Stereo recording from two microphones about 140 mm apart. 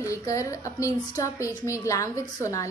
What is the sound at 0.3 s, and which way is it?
A woman's voice, 20° left (ahead or behind).